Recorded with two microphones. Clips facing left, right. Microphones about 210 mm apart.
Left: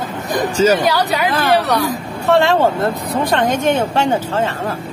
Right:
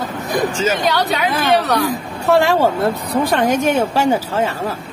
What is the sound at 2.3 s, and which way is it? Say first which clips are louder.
Speech: left 1 dB; 10° right (ahead or behind).